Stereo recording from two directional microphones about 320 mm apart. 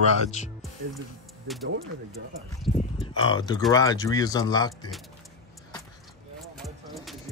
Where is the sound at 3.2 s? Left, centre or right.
Centre.